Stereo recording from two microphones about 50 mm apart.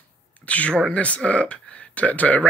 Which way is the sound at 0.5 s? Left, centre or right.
Left.